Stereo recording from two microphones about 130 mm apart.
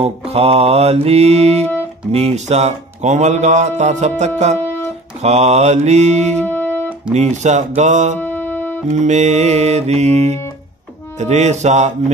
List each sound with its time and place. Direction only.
0.0 s mantra: 50° right (ahead or behind)
2.1 s speech: 60° right (ahead or behind)
4.6 s music: 15° left (ahead or behind)
5.2 s speech: 60° right (ahead or behind)
6.4 s music: 15° left (ahead or behind)
7.2 s speech: 60° right (ahead or behind)
8.2 s music: 15° left (ahead or behind)
8.9 s speech: 65° right (ahead or behind)